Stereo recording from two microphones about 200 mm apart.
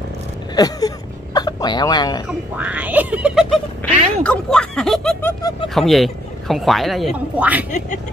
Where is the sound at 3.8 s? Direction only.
10° left (ahead or behind).